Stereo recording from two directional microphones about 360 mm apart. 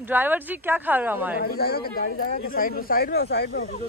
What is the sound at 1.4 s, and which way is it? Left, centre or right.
Speech, left.